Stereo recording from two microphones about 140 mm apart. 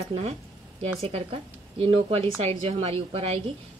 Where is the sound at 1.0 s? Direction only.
45° right (ahead or behind).